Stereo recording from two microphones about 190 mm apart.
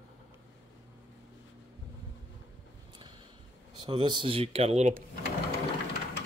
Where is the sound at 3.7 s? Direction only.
25° right (ahead or behind).